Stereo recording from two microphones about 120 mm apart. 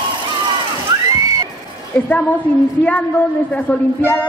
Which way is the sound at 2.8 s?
10° left (ahead or behind).